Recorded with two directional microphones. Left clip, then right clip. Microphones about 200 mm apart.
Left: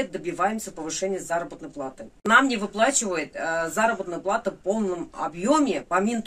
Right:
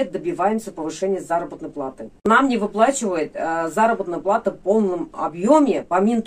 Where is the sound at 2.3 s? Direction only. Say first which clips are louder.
Right 2 dB; 25° left (ahead or behind).